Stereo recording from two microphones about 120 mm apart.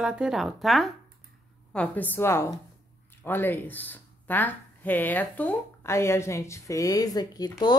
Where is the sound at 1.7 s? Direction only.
10° left (ahead or behind).